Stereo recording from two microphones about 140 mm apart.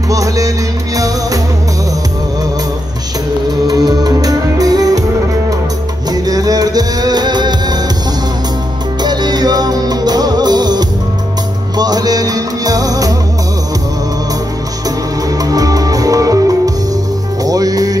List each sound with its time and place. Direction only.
0.1 s music: 25° right (ahead or behind)
3.6 s music: 30° right (ahead or behind)
6.2 s music: 25° right (ahead or behind)
9.0 s music: 30° right (ahead or behind)
15.4 s music: 25° right (ahead or behind)